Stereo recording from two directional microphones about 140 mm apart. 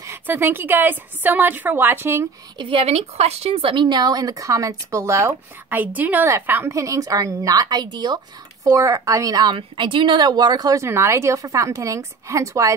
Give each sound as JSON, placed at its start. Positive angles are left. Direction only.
{"t": 0.0, "sound": "a woman's voice", "side_deg": -20}
{"t": 2.5, "sound": "speech", "side_deg": -35}